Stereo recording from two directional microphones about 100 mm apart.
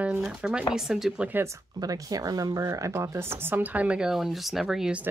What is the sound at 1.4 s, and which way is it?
Speech, 35° right (ahead or behind).